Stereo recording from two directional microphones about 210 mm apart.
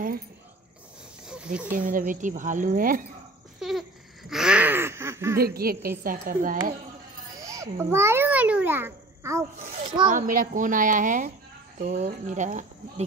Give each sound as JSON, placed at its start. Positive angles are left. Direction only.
{"t": 1.3, "sound": "snake", "side_deg": -5}
{"t": 1.7, "sound": "speech", "side_deg": -40}
{"t": 3.5, "sound": "laughter", "side_deg": 0}
{"t": 5.4, "sound": "a woman's voice", "side_deg": -45}
{"t": 7.3, "sound": "a child's voice", "side_deg": -15}
{"t": 10.0, "sound": "speech", "side_deg": -40}